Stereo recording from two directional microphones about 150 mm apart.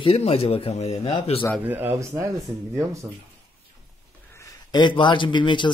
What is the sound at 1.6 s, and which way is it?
Speech, 10° right (ahead or behind).